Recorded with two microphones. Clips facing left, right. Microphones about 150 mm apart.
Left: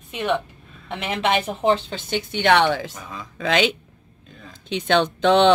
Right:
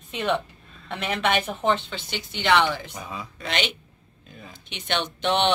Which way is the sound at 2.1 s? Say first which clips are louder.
Left 4 dB; 55° left (ahead or behind).